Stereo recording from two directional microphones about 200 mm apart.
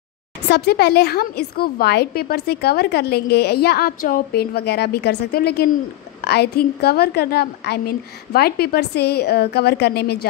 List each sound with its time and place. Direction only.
0.5 s a woman's voice: 55° left (ahead or behind)